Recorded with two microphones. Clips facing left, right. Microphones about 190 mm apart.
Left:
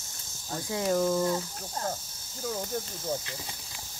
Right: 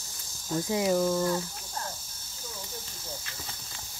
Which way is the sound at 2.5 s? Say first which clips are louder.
Left 10 dB; 55° left (ahead or behind).